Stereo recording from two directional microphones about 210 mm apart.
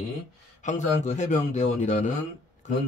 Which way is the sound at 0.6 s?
35° left (ahead or behind).